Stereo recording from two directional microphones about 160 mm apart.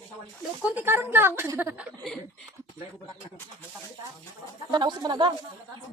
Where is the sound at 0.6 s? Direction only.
10° right (ahead or behind).